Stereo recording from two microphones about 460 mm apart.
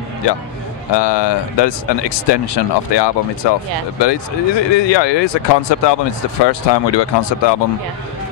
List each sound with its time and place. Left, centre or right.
0.9 s speech: left